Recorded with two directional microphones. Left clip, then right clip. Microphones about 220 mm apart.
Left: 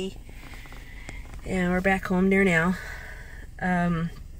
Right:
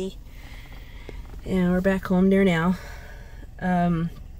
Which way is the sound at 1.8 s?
10° right (ahead or behind).